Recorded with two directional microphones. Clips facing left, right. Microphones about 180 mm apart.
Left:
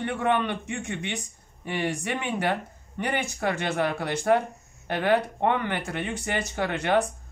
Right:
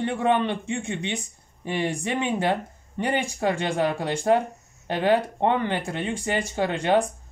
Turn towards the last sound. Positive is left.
turn(degrees=-15)  # may be behind; listen again after turning